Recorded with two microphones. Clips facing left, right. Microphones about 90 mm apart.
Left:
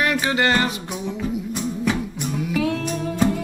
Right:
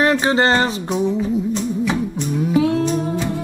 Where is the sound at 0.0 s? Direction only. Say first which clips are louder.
Right 5 dB; 30° right (ahead or behind).